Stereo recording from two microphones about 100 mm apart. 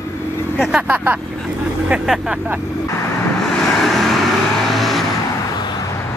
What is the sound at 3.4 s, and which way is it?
Vehicle, 5° left (ahead or behind).